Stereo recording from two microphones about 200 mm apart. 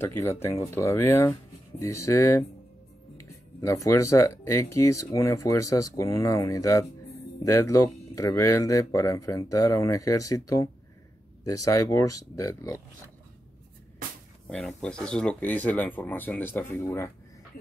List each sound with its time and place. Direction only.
0.0 s speech: 10° left (ahead or behind)
3.6 s speech: 15° left (ahead or behind)
14.5 s speech: centre (ahead or behind)